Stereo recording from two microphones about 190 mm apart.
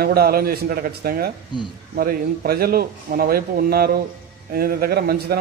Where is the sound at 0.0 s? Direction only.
55° right (ahead or behind).